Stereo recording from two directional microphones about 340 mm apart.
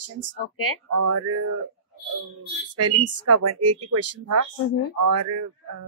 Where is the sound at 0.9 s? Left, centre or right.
Right.